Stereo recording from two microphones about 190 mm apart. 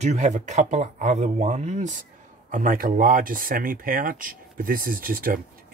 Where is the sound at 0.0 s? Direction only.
40° right (ahead or behind).